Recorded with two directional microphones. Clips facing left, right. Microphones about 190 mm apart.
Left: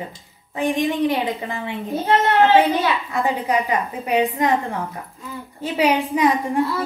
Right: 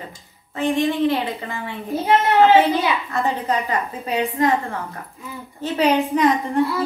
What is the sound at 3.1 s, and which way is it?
A woman's voice, 15° left (ahead or behind).